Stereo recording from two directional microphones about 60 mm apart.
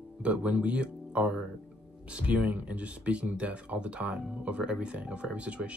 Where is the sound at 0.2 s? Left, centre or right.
Right.